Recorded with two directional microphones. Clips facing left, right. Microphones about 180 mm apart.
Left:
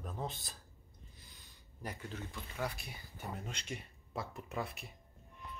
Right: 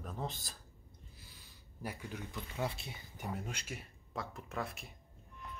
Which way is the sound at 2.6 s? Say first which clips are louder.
Right 1 dB; 25° right (ahead or behind).